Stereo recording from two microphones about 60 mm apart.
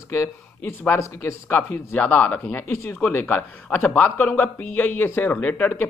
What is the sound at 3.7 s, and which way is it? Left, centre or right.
Speech, left.